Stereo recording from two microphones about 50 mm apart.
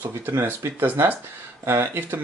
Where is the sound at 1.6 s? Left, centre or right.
Right.